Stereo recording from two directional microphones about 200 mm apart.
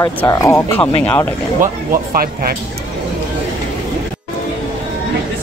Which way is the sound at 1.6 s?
45° right (ahead or behind).